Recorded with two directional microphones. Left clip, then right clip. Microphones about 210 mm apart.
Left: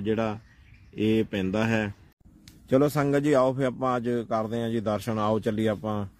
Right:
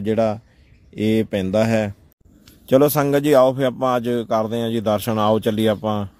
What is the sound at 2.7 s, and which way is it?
A man's voice, 30° right (ahead or behind).